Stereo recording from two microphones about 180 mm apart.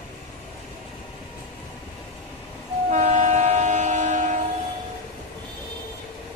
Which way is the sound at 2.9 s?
40° right (ahead or behind).